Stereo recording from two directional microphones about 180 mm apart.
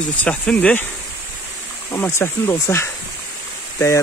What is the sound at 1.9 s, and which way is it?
Speech, 15° left (ahead or behind).